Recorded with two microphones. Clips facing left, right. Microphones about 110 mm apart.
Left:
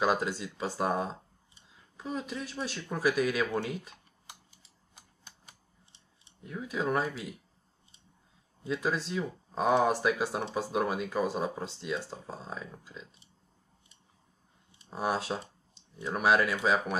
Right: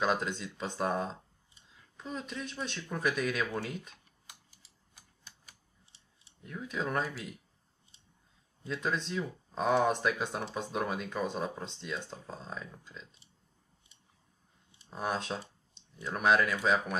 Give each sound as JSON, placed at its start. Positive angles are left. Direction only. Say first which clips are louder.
{"t": 0.0, "sound": "speech", "louder": "left 3 dB", "side_deg": 5}
{"t": 4.9, "sound": "typewriter", "louder": "left 3 dB", "side_deg": 25}
{"t": 5.9, "sound": "scissors", "louder": "left 3 dB", "side_deg": -5}
{"t": 6.5, "sound": "speech", "louder": "left 3 dB", "side_deg": 10}
{"t": 8.6, "sound": "speech", "louder": "left 3 dB", "side_deg": 5}
{"t": 14.9, "sound": "speech", "louder": "left 3 dB", "side_deg": 5}